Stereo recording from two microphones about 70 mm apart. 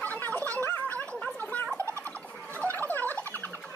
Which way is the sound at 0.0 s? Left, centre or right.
Left.